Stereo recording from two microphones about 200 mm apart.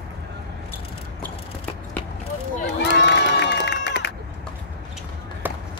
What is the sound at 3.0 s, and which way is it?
Music, 60° left (ahead or behind).